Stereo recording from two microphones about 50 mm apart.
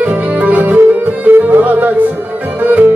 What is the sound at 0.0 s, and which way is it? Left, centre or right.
Music, right.